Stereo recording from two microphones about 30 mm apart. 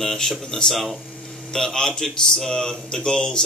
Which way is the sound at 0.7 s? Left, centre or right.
Centre.